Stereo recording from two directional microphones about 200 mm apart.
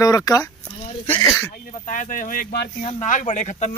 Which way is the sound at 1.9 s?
40° left (ahead or behind).